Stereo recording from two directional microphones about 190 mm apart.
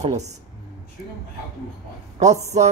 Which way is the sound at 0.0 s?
35° right (ahead or behind).